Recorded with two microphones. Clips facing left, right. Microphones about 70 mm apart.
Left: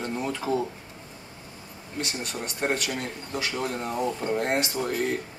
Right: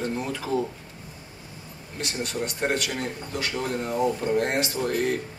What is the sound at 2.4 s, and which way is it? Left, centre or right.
Speech, centre.